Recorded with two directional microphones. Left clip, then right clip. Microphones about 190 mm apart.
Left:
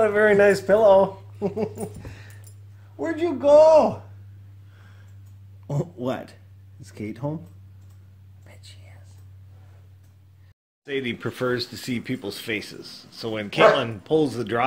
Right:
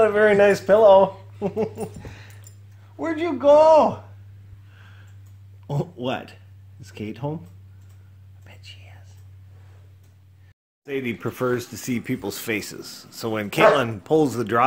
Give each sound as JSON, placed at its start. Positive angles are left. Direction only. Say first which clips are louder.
{"t": 0.0, "sound": "a man's voice", "louder": "right 1 dB", "side_deg": -10}
{"t": 5.7, "sound": "a man's voice", "louder": "right 1 dB", "side_deg": -15}
{"t": 8.5, "sound": "whispering", "louder": "right 4 dB", "side_deg": -15}
{"t": 10.9, "sound": "a man's voice", "louder": "even", "side_deg": -15}